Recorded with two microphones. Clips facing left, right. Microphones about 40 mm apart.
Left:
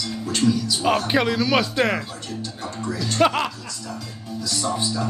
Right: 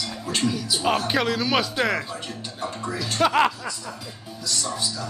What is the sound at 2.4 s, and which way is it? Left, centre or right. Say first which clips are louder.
Music: left 2 dB; centre.